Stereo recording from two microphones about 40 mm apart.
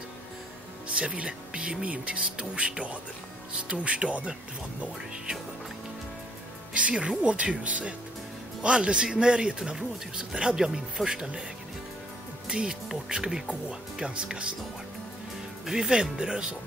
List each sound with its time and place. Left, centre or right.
0.8 s speech: right
6.7 s speech: right; by 11.4 s centre
12.4 s speech: right
13.7 s speech: right
15.6 s speech: centre